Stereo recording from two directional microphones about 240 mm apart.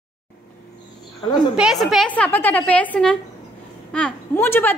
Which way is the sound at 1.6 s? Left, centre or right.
Centre.